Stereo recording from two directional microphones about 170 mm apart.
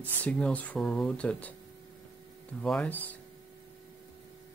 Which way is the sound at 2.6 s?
5° left (ahead or behind).